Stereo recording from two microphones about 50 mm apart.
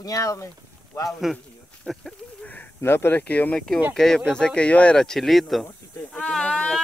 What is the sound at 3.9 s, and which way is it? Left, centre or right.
Speech, centre.